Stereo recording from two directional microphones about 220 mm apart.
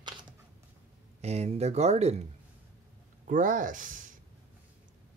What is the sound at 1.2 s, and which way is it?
Speech, 30° right (ahead or behind).